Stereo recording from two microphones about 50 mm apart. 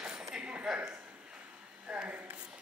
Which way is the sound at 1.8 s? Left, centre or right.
Right.